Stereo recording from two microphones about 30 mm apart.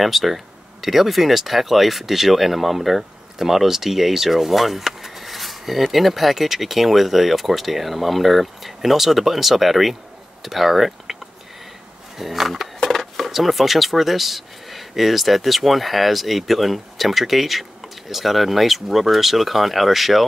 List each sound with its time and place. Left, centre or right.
0.0 s speech: centre
12.2 s speech: centre
12.8 s speech: centre